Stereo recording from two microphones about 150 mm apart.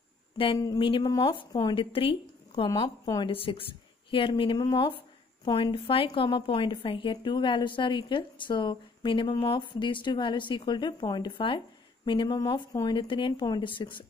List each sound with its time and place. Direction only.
0.6 s a woman's voice: 30° left (ahead or behind)
2.7 s a woman's voice: 25° left (ahead or behind)